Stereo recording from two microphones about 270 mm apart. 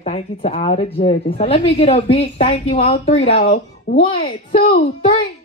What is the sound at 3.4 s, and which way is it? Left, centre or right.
Speech, left.